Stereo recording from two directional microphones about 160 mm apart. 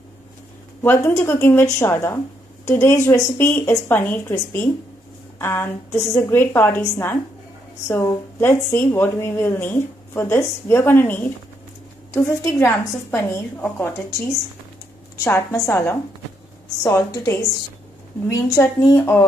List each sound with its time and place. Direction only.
0.8 s a woman's voice: 15° left (ahead or behind)
15.2 s a woman's voice: 15° left (ahead or behind)